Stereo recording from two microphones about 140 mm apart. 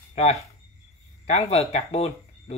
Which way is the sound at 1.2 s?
50° left (ahead or behind).